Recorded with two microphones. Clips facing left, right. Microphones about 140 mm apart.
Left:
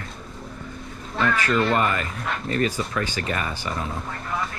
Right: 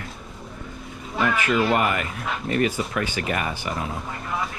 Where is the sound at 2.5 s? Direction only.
35° left (ahead or behind).